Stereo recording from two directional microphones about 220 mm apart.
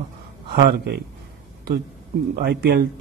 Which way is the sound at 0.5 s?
45° right (ahead or behind).